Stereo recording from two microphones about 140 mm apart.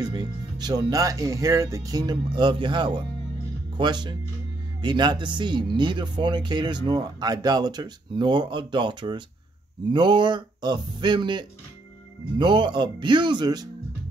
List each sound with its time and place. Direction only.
0.0 s speech: 30° right (ahead or behind)